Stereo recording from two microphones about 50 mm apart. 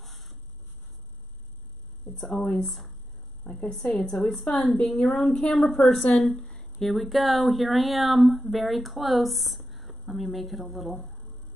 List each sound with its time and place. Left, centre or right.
0.0 s a sound: centre
2.0 s a woman's voice: centre
3.4 s a woman's voice: left
3.7 s a woman's voice: centre
6.4 s a sound: left
6.8 s a woman's voice: centre